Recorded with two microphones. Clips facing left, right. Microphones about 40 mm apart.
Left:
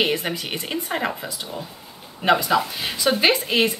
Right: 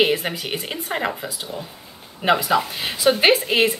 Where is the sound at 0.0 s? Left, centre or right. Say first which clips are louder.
Right 3 dB; centre.